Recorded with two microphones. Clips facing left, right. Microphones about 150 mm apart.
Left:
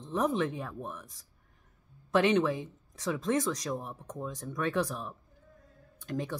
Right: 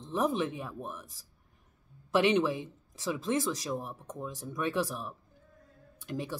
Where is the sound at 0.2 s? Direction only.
20° right (ahead or behind).